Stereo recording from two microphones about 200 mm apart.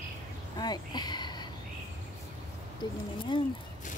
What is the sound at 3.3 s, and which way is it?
Speech, 25° left (ahead or behind).